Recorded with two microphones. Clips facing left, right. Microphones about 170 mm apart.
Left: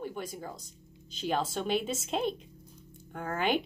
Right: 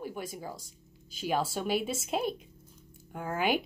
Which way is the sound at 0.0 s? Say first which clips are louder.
Even; 5° right (ahead or behind).